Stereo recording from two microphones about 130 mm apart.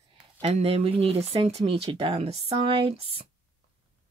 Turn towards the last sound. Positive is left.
turn(degrees=-45)  # may be behind; listen again after turning